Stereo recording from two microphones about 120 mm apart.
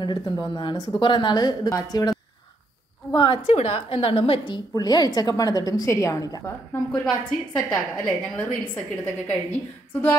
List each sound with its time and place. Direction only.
0.0 s a woman's voice: 35° left (ahead or behind)
3.1 s a woman's voice: 45° left (ahead or behind)
3.5 s a woman's voice: 60° left (ahead or behind)
4.7 s a woman's voice: 35° left (ahead or behind)
7.5 s a woman's voice: 10° left (ahead or behind)